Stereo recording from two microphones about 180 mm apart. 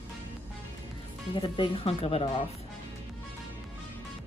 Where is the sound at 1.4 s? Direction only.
30° left (ahead or behind).